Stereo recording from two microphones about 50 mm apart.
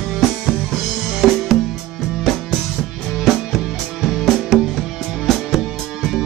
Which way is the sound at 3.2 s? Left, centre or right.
Centre.